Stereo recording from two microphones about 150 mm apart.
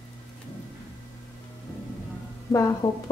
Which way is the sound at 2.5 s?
Centre (ahead or behind).